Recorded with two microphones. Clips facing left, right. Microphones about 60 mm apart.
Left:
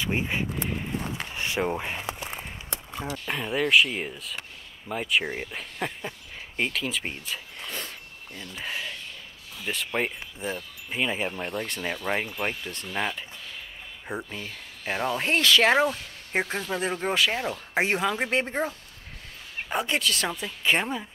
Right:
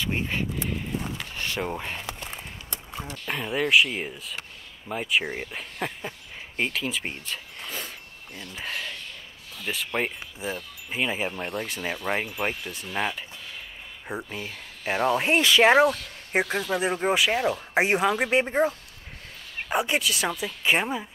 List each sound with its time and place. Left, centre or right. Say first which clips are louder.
0.0 s speech: even; centre
14.4 s speech: right 2 dB; centre